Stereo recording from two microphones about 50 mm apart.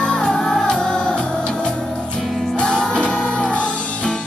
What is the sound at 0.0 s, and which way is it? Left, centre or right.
Music, centre.